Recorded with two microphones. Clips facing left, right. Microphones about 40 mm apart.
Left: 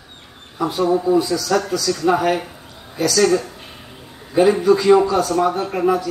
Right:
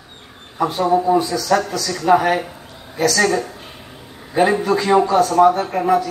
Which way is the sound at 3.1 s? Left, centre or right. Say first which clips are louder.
Left 2 dB; right.